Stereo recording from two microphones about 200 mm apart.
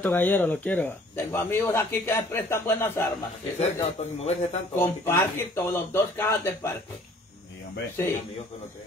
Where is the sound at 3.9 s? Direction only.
35° left (ahead or behind).